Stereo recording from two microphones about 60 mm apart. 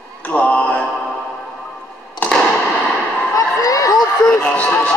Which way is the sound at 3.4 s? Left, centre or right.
Left.